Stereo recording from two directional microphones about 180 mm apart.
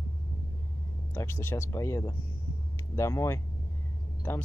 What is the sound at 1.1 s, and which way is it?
Speech, 15° left (ahead or behind).